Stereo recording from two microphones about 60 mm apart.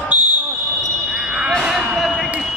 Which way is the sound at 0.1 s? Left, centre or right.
Right.